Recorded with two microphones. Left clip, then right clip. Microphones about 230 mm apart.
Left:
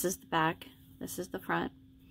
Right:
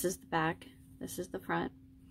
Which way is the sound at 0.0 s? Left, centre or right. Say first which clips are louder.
Left 3 dB; centre.